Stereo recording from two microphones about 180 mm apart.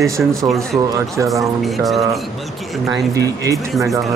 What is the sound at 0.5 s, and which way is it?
Speech, 15° right (ahead or behind).